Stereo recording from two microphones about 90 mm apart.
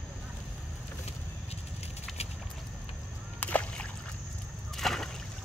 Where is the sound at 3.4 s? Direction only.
15° left (ahead or behind).